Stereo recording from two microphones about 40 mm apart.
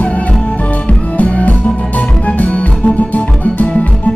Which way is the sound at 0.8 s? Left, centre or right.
Left.